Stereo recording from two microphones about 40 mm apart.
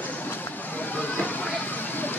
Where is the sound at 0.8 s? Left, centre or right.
Left.